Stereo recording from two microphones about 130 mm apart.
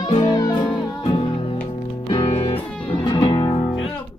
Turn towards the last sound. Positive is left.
turn(degrees=40)  # may be behind; listen again after turning